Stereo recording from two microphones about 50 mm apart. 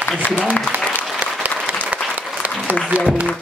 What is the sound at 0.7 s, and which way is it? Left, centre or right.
Applause, right.